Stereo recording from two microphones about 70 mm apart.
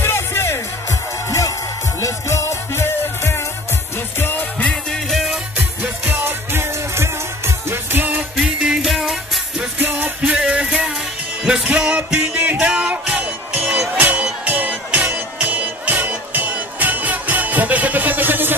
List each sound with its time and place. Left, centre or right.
0.0 s music: left
2.0 s music: left
4.9 s music: centre
5.6 s music: right
6.2 s music: right
8.8 s music: centre
9.8 s music: right
10.3 s music: centre; by 18.6 s right